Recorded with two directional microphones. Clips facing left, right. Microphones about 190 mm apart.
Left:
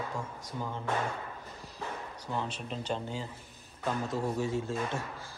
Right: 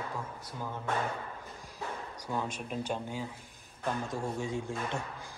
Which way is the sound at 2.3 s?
10° right (ahead or behind).